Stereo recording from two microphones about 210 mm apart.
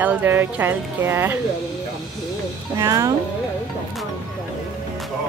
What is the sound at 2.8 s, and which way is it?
Speech, 15° right (ahead or behind).